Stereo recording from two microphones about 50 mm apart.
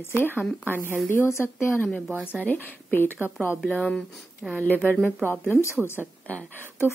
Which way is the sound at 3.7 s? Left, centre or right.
Centre.